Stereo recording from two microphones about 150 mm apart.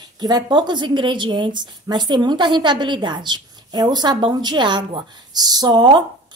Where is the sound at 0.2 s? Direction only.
25° right (ahead or behind).